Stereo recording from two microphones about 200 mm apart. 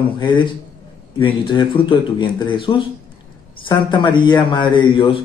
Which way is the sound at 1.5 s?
25° left (ahead or behind).